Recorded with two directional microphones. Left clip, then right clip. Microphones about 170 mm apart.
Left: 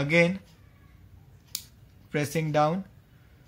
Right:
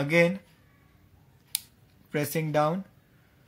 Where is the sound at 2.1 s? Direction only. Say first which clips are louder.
Even; 20° right (ahead or behind).